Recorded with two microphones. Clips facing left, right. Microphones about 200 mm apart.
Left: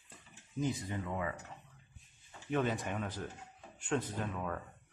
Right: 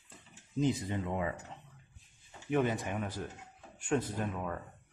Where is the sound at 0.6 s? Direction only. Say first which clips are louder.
Right 5 dB; 20° right (ahead or behind).